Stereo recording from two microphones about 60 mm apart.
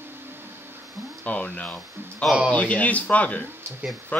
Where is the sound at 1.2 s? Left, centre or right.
Left.